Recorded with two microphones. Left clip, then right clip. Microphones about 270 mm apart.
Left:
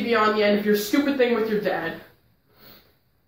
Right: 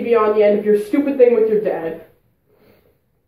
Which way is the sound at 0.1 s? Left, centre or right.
Centre.